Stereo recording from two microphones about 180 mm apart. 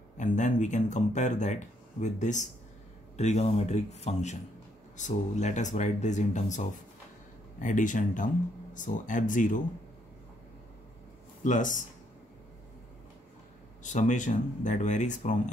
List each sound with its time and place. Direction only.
0.2 s speech: 45° left (ahead or behind)
11.4 s speech: 45° left (ahead or behind)
13.8 s speech: 40° left (ahead or behind)